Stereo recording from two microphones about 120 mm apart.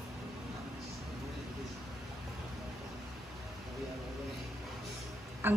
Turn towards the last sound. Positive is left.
turn(degrees=-20)  # may be behind; listen again after turning